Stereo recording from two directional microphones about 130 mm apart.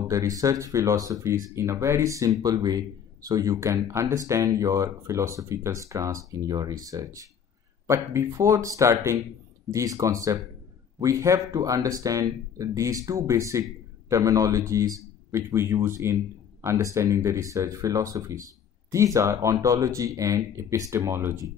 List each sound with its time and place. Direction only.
0.1 s speech: 25° right (ahead or behind)